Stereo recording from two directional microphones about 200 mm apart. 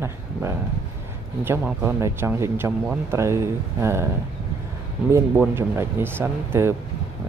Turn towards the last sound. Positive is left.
turn(degrees=-10)  # may be behind; listen again after turning